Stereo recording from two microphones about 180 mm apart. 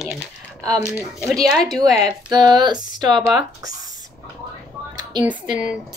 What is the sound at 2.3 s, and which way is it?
Speech, 25° right (ahead or behind).